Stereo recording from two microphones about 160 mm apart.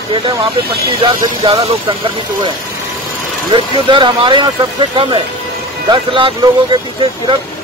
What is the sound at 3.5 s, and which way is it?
Speech, 30° right (ahead or behind).